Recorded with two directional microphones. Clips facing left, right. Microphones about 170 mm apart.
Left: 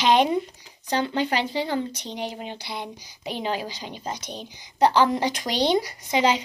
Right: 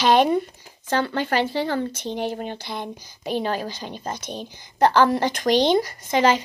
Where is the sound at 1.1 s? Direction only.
50° right (ahead or behind).